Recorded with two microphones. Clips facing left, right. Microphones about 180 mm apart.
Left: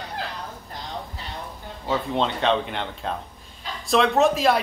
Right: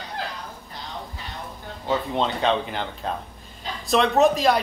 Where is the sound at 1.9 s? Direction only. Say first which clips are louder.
Even; centre (ahead or behind).